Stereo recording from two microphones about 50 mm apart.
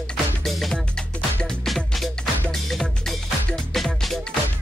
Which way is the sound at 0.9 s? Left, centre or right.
Centre.